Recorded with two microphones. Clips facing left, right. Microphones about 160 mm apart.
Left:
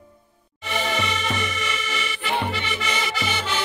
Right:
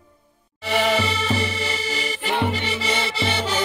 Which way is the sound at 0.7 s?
90° right.